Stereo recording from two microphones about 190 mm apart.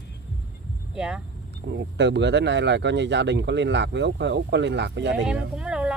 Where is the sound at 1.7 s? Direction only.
65° right (ahead or behind).